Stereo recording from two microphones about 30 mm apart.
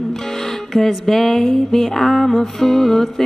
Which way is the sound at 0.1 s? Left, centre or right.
Centre.